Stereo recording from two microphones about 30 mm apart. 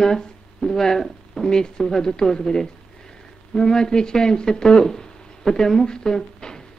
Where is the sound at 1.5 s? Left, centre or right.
Left.